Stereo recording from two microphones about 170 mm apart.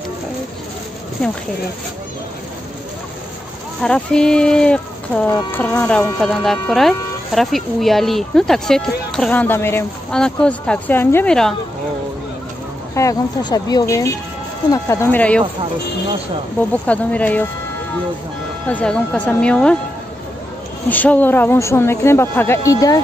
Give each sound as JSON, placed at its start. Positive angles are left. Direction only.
{"t": 3.8, "sound": "speech", "side_deg": 5}
{"t": 12.9, "sound": "a woman's voice", "side_deg": 20}
{"t": 16.8, "sound": "a woman's voice", "side_deg": 10}
{"t": 18.7, "sound": "a woman's voice", "side_deg": 10}
{"t": 20.9, "sound": "a woman's voice", "side_deg": 10}